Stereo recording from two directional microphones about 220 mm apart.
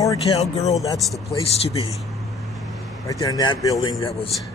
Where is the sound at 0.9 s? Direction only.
Centre (ahead or behind).